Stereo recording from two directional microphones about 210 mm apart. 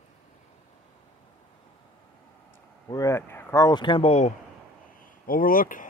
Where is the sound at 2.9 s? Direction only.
15° left (ahead or behind); by 4.4 s 30° left (ahead or behind).